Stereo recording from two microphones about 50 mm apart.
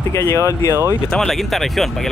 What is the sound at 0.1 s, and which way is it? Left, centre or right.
Speech, left.